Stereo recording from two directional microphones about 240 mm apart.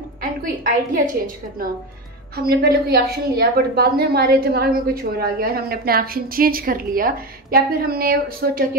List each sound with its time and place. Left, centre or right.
0.2 s a woman's voice: right